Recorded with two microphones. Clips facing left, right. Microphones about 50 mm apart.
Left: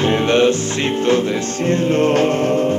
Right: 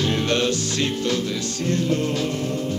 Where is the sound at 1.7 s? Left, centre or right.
Left.